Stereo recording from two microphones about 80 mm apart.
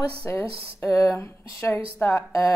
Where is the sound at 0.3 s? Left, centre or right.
Left.